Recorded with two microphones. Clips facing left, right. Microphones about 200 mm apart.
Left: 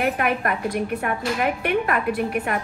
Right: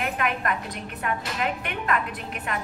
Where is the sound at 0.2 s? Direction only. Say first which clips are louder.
Left 4 dB; 55° left (ahead or behind).